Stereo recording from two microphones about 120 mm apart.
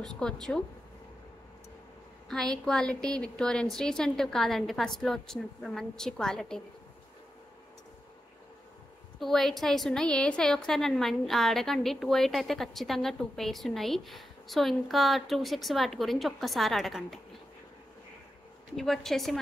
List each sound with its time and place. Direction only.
0.0 s a woman's voice: 5° left (ahead or behind)
2.2 s a woman's voice: 5° left (ahead or behind)
9.2 s a woman's voice: centre (ahead or behind)
18.8 s a woman's voice: 5° left (ahead or behind)